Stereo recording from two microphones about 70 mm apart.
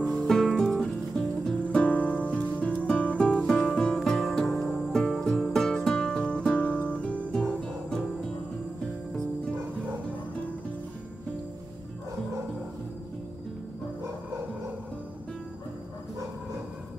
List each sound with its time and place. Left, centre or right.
0.0 s music: centre
1.8 s music: left